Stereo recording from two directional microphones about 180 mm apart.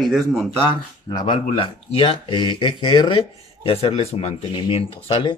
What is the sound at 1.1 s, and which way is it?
Speech, 30° left (ahead or behind).